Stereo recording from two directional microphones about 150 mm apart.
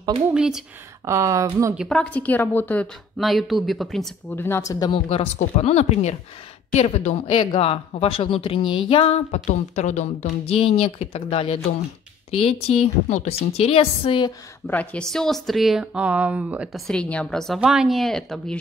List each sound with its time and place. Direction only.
0.3 s speech: 5° right (ahead or behind)
1.0 s speech: 20° right (ahead or behind)
1.9 s a woman's voice: 10° left (ahead or behind)
3.2 s speech: centre (ahead or behind)
4.4 s a woman's voice: 15° left (ahead or behind); by 14.3 s 35° left (ahead or behind)
14.7 s speech: 10° left (ahead or behind)